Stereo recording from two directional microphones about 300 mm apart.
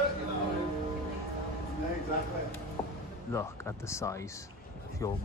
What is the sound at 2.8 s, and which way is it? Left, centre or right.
Music, centre.